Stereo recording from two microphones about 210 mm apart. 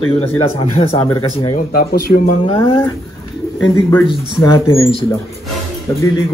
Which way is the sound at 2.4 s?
25° left (ahead or behind).